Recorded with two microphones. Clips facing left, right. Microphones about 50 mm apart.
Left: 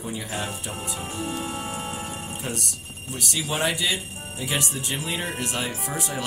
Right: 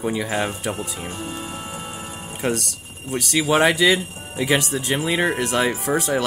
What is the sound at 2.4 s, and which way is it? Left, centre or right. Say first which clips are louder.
Speech: right 11 dB; right.